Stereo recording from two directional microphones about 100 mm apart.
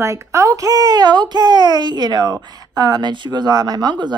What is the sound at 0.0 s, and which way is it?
Speech, 30° right (ahead or behind).